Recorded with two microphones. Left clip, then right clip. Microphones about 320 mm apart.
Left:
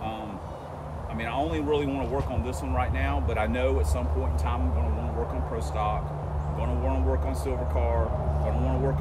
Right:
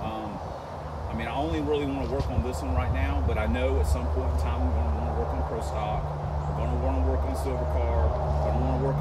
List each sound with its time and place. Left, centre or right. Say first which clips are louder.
1.3 s speech: left 1 dB; centre
3.3 s speech: left 2 dB; centre